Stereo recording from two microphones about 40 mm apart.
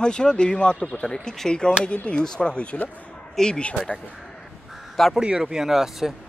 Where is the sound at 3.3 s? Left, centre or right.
Centre.